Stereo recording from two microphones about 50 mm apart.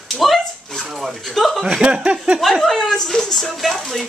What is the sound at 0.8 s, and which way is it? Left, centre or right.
Speech, centre.